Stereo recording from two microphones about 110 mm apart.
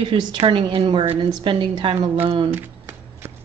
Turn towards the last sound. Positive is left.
turn(degrees=-20)  # may be behind; listen again after turning